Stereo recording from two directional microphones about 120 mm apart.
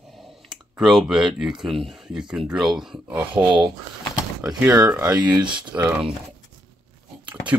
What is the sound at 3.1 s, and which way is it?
Speech, 40° right (ahead or behind).